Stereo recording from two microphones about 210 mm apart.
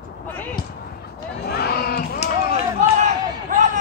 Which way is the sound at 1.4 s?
50° left (ahead or behind).